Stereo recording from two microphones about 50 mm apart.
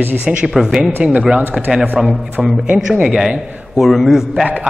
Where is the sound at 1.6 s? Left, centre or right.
Centre.